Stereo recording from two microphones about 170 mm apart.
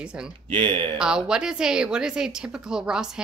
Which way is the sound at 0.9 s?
5° right (ahead or behind).